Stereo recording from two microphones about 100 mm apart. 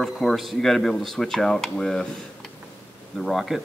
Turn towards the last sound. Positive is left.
turn(degrees=0)  # may be behind; listen again after turning